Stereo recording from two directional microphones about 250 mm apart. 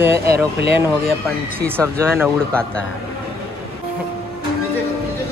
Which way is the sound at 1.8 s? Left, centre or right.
Centre.